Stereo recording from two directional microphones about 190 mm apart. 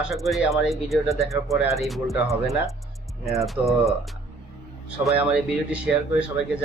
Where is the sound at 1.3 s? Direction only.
15° right (ahead or behind).